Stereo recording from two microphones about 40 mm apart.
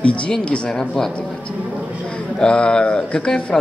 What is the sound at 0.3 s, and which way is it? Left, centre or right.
Speech, centre.